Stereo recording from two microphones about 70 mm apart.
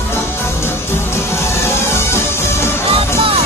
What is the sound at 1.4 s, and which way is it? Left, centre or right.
Music, left.